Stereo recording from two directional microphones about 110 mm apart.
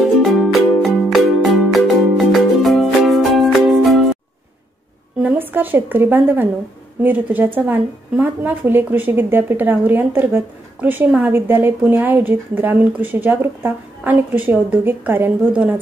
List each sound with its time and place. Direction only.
0.2 s music: centre (ahead or behind)
5.2 s a woman's voice: 15° right (ahead or behind)